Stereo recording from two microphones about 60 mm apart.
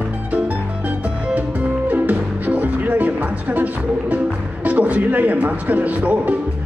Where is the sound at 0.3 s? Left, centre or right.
Right.